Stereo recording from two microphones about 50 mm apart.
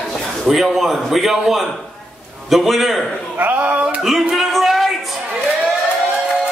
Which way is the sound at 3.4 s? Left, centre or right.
Right.